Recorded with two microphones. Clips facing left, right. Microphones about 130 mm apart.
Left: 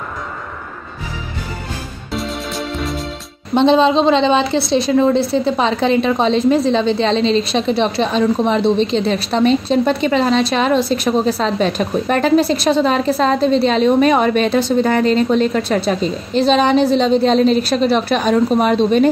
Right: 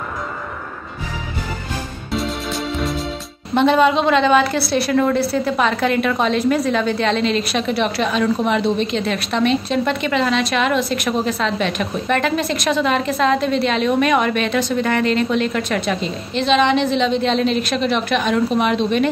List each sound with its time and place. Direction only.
2.1 s music: centre (ahead or behind)
3.5 s a woman's voice: 25° left (ahead or behind)